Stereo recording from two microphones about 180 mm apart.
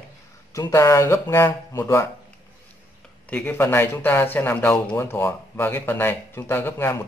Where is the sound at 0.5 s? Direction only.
20° left (ahead or behind).